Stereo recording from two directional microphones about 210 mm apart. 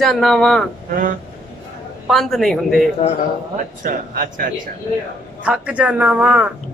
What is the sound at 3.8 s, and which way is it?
Speech, 45° right (ahead or behind).